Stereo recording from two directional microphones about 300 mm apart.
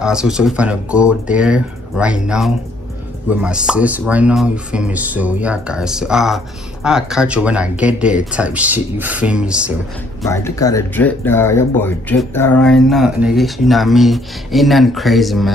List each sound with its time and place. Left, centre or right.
0.0 s speech: centre
10.2 s speech: centre